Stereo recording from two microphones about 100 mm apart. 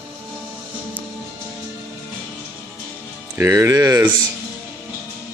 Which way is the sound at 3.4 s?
30° right (ahead or behind).